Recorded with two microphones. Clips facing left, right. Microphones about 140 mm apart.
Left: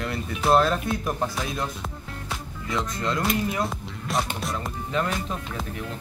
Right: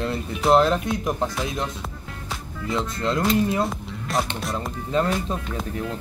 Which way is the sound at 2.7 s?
25° right (ahead or behind).